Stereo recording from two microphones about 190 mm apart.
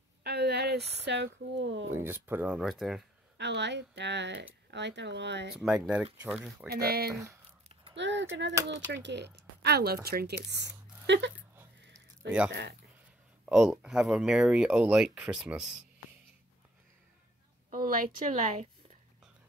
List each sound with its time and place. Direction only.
0.2 s speech: 60° right (ahead or behind)
1.9 s speech: 10° right (ahead or behind)
3.3 s speech: 65° right (ahead or behind)
6.2 s speech: 5° right (ahead or behind)
6.7 s a woman's voice: 55° right (ahead or behind)
7.9 s speech: 70° right (ahead or behind)
12.4 s speech: 60° right (ahead or behind)
13.5 s speech: centre (ahead or behind)
17.6 s a woman's voice: 50° right (ahead or behind)